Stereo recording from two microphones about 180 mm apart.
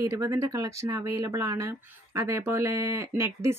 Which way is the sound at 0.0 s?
15° right (ahead or behind).